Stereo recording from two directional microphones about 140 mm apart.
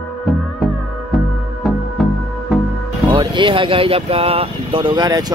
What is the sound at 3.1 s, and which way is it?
Speech, 35° right (ahead or behind).